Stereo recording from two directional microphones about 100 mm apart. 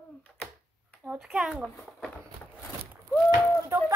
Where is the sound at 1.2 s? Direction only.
10° right (ahead or behind).